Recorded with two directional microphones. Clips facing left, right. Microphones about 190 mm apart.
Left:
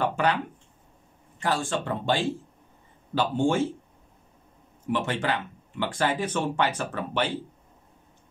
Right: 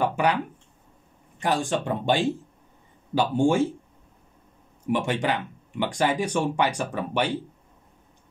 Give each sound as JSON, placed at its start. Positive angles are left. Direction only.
{"t": 0.0, "sound": "a sound", "side_deg": -10}
{"t": 1.4, "sound": "speech", "side_deg": -15}
{"t": 4.9, "sound": "speech", "side_deg": -15}